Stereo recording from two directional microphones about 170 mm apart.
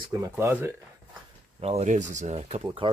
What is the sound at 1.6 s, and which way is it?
Speech, 40° right (ahead or behind).